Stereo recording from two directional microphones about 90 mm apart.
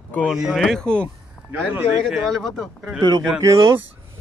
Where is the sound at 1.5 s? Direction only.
25° right (ahead or behind).